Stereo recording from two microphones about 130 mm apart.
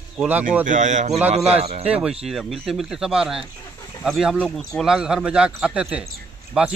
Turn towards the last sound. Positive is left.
turn(degrees=-5)  # may be behind; listen again after turning